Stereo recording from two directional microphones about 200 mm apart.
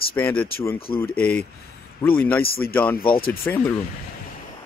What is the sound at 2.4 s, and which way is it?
Speech, 50° left (ahead or behind).